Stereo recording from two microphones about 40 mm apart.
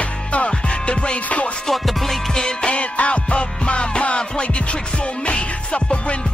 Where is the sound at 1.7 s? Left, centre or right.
Centre.